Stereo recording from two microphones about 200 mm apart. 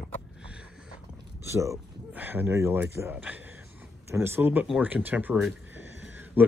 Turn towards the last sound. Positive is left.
turn(degrees=-10)  # may be behind; listen again after turning